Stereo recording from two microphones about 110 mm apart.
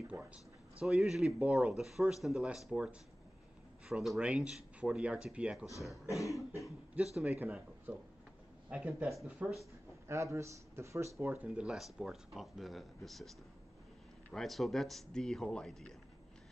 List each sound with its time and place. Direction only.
0.7 s speech: 5° right (ahead or behind)
6.0 s cough: 30° left (ahead or behind)
7.2 s speech: 15° right (ahead or behind)
10.0 s speech: 25° right (ahead or behind); by 13.3 s centre (ahead or behind)
14.3 s speech: centre (ahead or behind)